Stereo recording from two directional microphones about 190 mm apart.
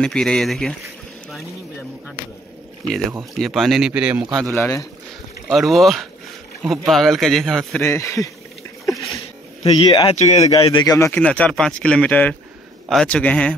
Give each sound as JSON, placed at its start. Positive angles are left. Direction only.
{"t": 0.0, "sound": "a man's voice", "side_deg": 5}
{"t": 3.3, "sound": "a man's voice", "side_deg": 0}
{"t": 4.6, "sound": "speech", "side_deg": 15}
{"t": 5.5, "sound": "a man's voice", "side_deg": 0}
{"t": 7.8, "sound": "speech", "side_deg": 15}
{"t": 9.8, "sound": "speech", "side_deg": 20}
{"t": 10.1, "sound": "speech", "side_deg": 35}
{"t": 11.1, "sound": "speech", "side_deg": 5}